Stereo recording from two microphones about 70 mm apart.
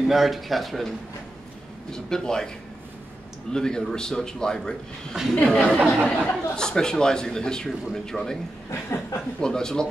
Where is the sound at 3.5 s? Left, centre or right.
Centre.